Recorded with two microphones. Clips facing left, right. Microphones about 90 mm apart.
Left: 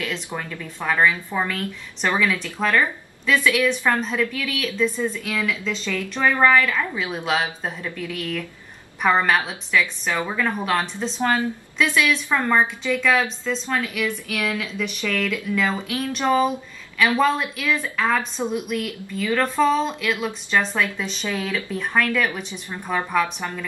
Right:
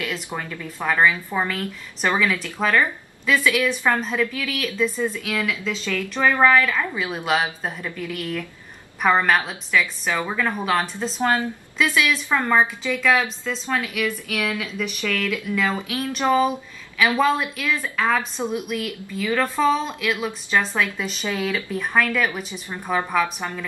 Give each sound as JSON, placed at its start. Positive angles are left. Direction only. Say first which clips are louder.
{"t": 0.5, "sound": "speech", "louder": "right 1 dB", "side_deg": -5}
{"t": 11.1, "sound": "speech", "louder": "even", "side_deg": -15}
{"t": 11.8, "sound": "speech", "louder": "left 1 dB", "side_deg": -5}